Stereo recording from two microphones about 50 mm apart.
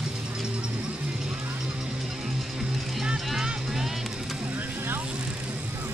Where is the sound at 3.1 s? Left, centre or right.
Centre.